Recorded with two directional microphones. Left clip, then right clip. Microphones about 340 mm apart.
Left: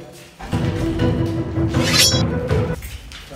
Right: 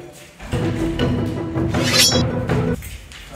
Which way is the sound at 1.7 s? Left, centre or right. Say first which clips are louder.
Even; centre.